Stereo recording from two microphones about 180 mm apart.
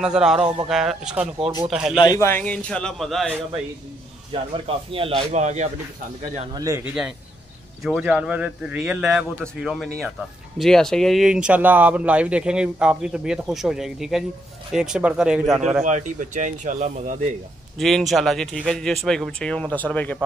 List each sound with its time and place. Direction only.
0.0 s speech: 5° right (ahead or behind)
2.0 s a man's voice: 20° left (ahead or behind); by 3.3 s centre (ahead or behind)
4.3 s a man's voice: 30° right (ahead or behind)
6.5 s speech: 20° right (ahead or behind)
6.8 s speech: 5° right (ahead or behind)
15.8 s speech: 45° right (ahead or behind)
17.7 s speech: centre (ahead or behind)